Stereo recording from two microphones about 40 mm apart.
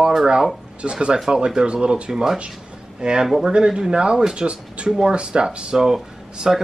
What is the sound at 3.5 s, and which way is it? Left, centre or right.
Speech, centre.